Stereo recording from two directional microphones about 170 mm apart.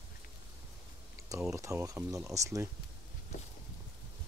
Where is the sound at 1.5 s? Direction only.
15° right (ahead or behind).